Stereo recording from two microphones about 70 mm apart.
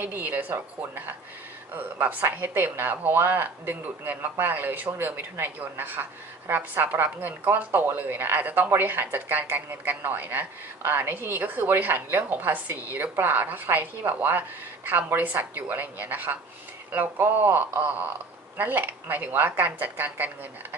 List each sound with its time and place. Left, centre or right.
0.0 s a woman's voice: right